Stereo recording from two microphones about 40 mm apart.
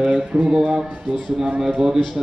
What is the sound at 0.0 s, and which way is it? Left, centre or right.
Speech, right.